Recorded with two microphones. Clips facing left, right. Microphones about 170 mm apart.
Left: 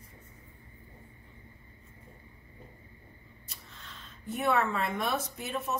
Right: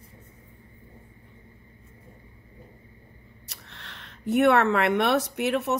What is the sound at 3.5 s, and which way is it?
Speech, 75° right (ahead or behind).